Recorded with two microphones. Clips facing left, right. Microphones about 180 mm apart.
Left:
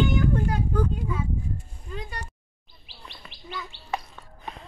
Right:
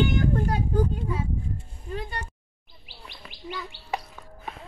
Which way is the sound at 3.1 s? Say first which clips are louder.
Right 2 dB; 10° right (ahead or behind).